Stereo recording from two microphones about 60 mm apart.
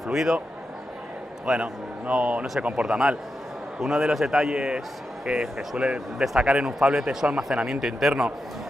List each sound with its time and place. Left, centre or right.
0.0 s a man's voice: centre
1.4 s a man's voice: centre
2.7 s a man's voice: centre